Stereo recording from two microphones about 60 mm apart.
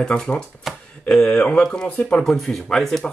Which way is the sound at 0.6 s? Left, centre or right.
Centre.